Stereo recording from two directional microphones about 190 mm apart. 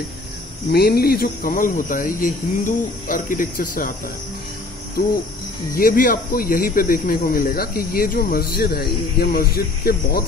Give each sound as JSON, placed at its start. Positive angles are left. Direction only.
{"t": 0.7, "sound": "speech", "side_deg": 55}
{"t": 5.8, "sound": "speech", "side_deg": 45}